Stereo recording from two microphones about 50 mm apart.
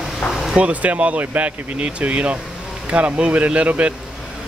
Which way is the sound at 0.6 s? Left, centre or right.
Right.